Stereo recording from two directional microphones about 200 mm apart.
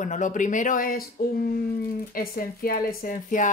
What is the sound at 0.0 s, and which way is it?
A woman's voice, 40° left (ahead or behind).